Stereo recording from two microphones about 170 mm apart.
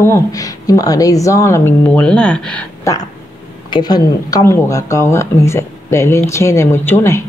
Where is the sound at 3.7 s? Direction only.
25° left (ahead or behind).